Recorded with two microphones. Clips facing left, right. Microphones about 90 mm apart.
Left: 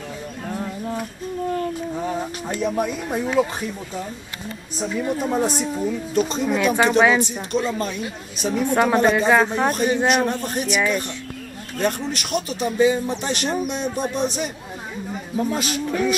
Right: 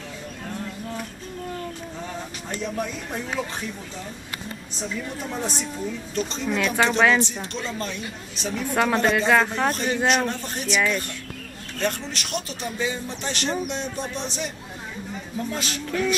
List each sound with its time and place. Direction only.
2.0 s music: 15° left (ahead or behind)
2.8 s speech: 10° left (ahead or behind)
4.9 s a woman's voice: 20° left (ahead or behind)